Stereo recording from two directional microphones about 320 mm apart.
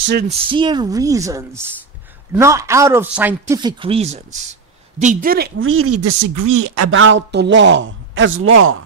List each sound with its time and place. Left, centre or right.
0.0 s speech: right
0.3 s speech: centre; by 6.9 s right
6.9 s a man's voice: right